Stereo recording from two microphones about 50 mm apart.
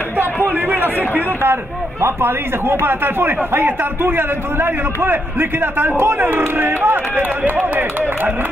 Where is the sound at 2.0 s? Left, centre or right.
Right.